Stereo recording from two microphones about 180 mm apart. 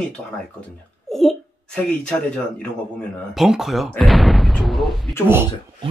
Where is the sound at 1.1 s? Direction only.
Centre (ahead or behind).